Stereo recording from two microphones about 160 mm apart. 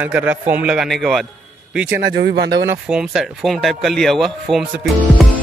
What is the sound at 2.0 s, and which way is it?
Speech, 90° right.